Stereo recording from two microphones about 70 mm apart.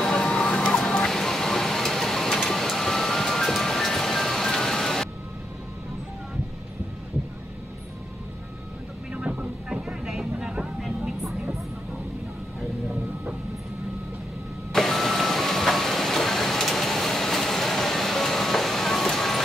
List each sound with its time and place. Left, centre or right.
0.0 s vehicle: centre
9.1 s vehicle: centre
14.7 s vehicle: centre